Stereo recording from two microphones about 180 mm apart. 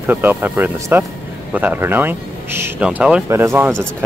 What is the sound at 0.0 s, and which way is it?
Speech, 10° right (ahead or behind).